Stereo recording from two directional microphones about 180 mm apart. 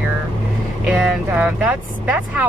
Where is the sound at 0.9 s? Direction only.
5° right (ahead or behind).